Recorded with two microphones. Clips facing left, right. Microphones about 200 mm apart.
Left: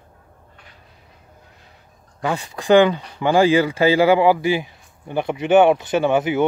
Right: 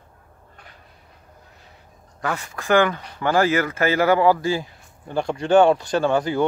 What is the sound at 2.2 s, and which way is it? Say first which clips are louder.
Speech: left 4 dB; 15° left (ahead or behind).